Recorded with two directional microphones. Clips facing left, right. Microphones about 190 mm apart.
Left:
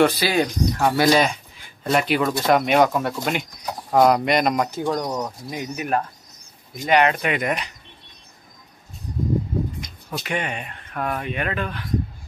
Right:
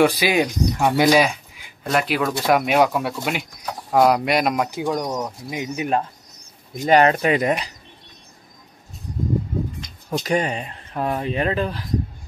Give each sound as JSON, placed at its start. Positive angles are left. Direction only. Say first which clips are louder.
{"t": 0.0, "sound": "speech", "louder": "right 1 dB", "side_deg": -15}
{"t": 6.9, "sound": "speech", "louder": "right 3 dB", "side_deg": -35}
{"t": 10.1, "sound": "speech", "louder": "right 6 dB", "side_deg": -40}